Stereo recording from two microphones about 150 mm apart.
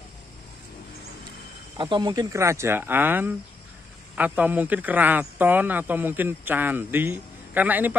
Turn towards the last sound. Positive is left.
turn(degrees=-10)  # may be behind; listen again after turning